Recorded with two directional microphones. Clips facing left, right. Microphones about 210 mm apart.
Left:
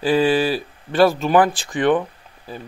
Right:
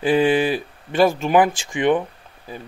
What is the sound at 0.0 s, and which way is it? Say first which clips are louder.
Speech: even; 15° right (ahead or behind).